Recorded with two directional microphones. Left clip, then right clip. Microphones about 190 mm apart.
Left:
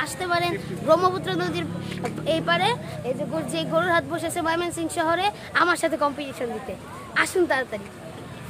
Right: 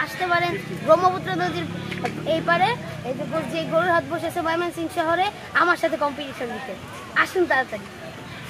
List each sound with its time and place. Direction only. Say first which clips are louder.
0.0 s a woman's voice: right 2 dB; 30° left (ahead or behind)
3.5 s a woman's voice: right 1 dB; 15° left (ahead or behind)
7.2 s a woman's voice: right 2 dB; 30° left (ahead or behind)